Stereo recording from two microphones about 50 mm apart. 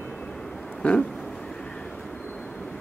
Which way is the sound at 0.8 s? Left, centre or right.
Left.